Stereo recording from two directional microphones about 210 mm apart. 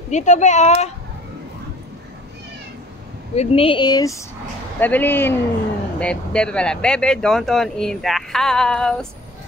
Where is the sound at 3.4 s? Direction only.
25° left (ahead or behind); by 9.0 s 5° left (ahead or behind).